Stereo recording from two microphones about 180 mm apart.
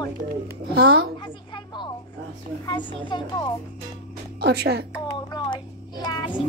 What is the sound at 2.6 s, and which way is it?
Speech, 20° left (ahead or behind).